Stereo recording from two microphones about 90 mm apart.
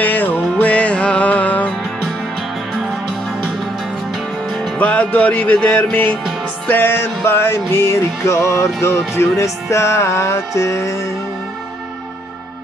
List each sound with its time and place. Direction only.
0.0 s music: 20° left (ahead or behind)
4.7 s music: 15° left (ahead or behind); by 11.0 s 35° left (ahead or behind)